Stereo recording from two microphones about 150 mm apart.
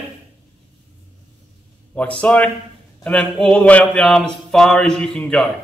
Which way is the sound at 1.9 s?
10° left (ahead or behind).